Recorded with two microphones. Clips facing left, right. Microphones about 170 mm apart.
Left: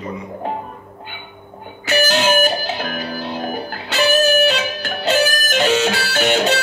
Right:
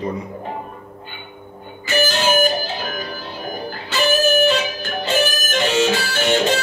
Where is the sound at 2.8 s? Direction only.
70° left (ahead or behind).